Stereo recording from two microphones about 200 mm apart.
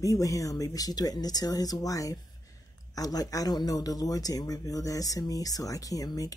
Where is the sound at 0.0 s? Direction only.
15° left (ahead or behind).